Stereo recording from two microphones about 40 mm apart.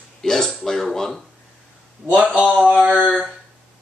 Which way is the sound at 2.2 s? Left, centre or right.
Right.